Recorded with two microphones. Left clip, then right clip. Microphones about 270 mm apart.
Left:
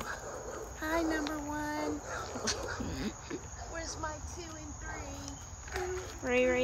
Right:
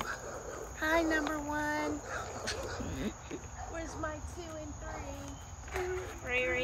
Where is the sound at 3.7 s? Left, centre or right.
Centre.